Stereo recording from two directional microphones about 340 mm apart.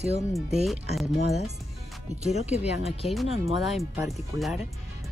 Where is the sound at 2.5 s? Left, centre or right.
Centre.